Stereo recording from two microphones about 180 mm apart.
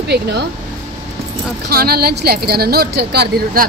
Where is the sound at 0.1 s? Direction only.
65° right (ahead or behind).